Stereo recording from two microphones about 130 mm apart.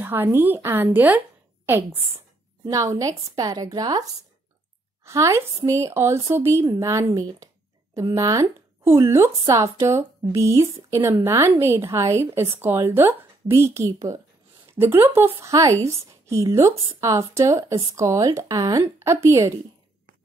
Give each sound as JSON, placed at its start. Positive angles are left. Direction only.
{"t": 0.0, "sound": "a woman's voice", "side_deg": -15}
{"t": 15.8, "sound": "speech", "side_deg": -50}
{"t": 16.1, "sound": "a woman's voice", "side_deg": -25}